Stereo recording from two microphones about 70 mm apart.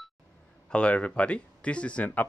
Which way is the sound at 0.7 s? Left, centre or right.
Centre.